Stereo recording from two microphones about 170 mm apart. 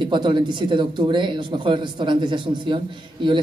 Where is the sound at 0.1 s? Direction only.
30° right (ahead or behind).